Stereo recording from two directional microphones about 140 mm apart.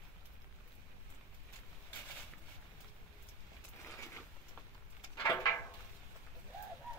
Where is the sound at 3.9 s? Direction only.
20° left (ahead or behind).